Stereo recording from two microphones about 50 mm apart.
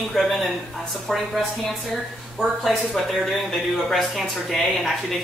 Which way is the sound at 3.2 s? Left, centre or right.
Centre.